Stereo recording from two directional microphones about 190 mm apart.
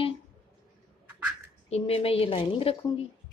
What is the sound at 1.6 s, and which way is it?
A woman's voice, 30° left (ahead or behind).